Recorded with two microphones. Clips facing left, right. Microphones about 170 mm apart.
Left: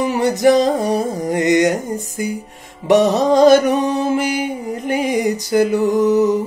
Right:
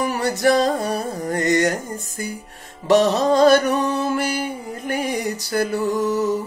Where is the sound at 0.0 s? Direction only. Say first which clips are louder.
Left 5 dB; 20° left (ahead or behind).